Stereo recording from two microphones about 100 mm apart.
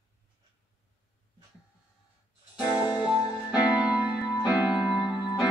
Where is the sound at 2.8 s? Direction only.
50° left (ahead or behind).